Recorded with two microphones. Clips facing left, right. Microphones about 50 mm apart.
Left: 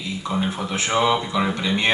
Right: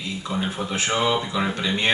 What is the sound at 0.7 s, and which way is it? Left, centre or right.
Speech, left.